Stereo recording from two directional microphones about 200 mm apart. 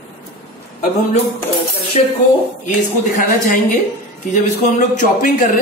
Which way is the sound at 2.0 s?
30° left (ahead or behind).